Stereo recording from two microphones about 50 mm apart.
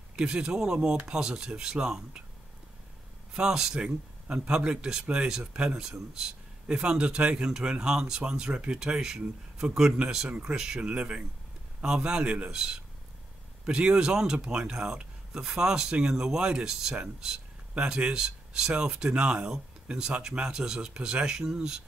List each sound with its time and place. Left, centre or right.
0.1 s speech: centre
3.3 s a man's voice: centre